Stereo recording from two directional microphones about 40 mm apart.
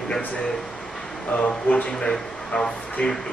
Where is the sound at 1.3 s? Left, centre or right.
Left.